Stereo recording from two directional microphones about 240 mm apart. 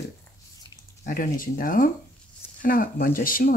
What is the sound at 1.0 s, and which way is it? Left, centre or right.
Speech, left.